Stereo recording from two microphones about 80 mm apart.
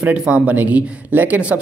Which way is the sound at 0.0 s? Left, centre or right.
Centre.